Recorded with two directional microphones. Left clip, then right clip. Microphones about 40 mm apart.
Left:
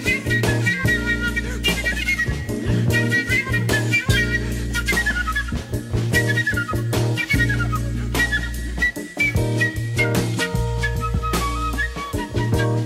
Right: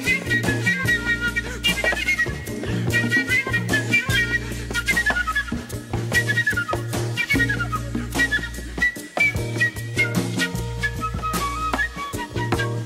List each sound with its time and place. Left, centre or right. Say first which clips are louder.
0.0 s music: even; left
7.0 s music: left 1 dB; centre
8.8 s music: right 1 dB; left
12.4 s music: left 1 dB; left